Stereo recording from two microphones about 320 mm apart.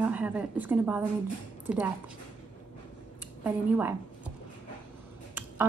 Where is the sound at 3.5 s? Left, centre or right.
Centre.